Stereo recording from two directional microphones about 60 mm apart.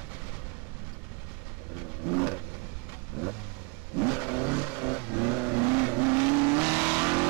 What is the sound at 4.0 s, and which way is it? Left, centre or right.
Vehicle, right.